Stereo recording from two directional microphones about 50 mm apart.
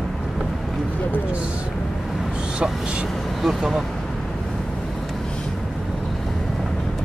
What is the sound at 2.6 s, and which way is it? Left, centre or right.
Speech, right.